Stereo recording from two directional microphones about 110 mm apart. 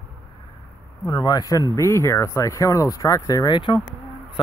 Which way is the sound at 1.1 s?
40° left (ahead or behind).